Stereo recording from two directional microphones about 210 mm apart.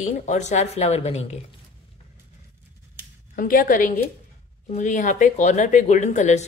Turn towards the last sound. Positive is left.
turn(degrees=35)  # may be behind; listen again after turning